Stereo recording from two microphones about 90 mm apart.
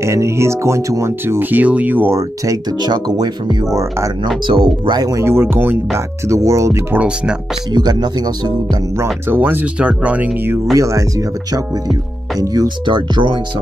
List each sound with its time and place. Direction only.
0.0 s speech: 30° right (ahead or behind)
2.1 s speech: 40° right (ahead or behind)
2.8 s speech: 50° right (ahead or behind)
4.8 s speech: 45° right (ahead or behind)
5.2 s speech: 25° right (ahead or behind)
6.2 s speech: 35° right (ahead or behind)
7.7 s speech: 50° right (ahead or behind)
9.3 s speech: 20° right (ahead or behind)
10.7 s speech: 35° right (ahead or behind)
12.9 s speech: 65° right (ahead or behind)